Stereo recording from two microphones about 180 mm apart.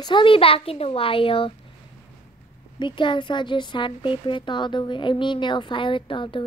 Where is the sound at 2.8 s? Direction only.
25° left (ahead or behind).